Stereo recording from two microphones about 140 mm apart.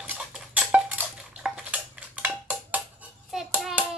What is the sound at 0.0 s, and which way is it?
Dishes, 10° right (ahead or behind).